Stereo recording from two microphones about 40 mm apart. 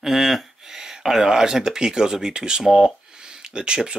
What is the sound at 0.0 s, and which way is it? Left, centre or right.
Speech, centre.